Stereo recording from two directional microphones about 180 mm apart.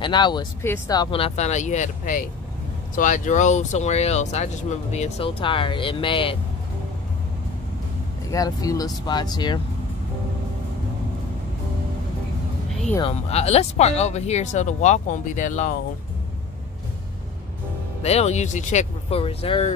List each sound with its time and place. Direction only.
0.0 s speech: 25° left (ahead or behind)
8.3 s speech: 20° left (ahead or behind)
13.3 s speech: 35° left (ahead or behind)
18.0 s speech: 35° left (ahead or behind)